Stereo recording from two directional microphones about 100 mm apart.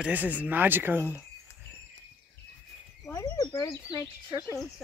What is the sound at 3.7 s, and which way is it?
Speech, 30° left (ahead or behind).